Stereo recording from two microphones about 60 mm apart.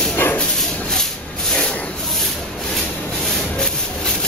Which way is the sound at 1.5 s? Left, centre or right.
Centre.